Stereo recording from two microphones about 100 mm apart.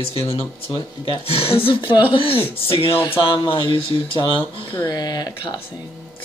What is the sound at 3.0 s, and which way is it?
Speech, 60° left (ahead or behind).